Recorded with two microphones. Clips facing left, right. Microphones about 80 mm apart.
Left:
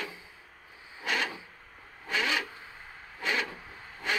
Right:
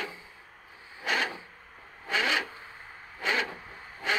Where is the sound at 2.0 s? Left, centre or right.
Right.